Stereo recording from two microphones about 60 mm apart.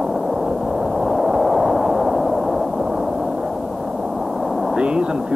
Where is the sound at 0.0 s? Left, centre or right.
Centre.